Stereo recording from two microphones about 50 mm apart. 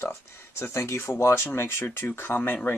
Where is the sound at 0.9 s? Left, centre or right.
Left.